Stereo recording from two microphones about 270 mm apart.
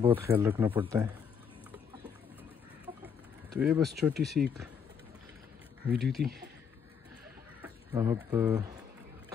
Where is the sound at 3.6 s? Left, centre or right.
Centre.